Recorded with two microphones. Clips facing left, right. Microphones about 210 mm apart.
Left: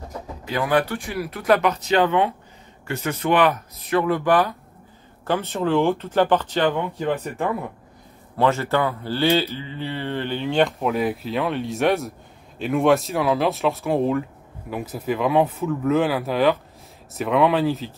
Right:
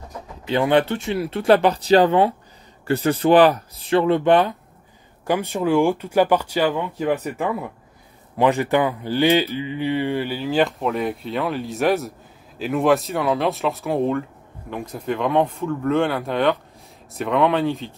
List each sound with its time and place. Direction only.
0.5 s speech: 25° right (ahead or behind)
5.2 s speech: 15° right (ahead or behind)
8.4 s speech: 15° right (ahead or behind); by 17.9 s centre (ahead or behind)